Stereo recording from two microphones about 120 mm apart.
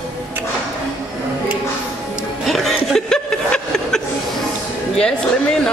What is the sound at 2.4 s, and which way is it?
Chuckle, centre (ahead or behind).